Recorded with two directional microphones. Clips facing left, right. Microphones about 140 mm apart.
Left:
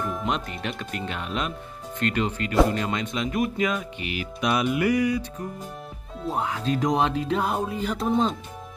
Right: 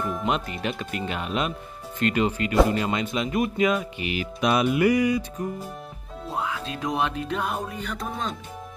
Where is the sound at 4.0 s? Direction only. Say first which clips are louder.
Right 2 dB; 25° right (ahead or behind).